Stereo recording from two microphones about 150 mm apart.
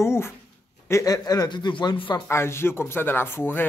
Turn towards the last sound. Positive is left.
turn(degrees=15)  # may be behind; listen again after turning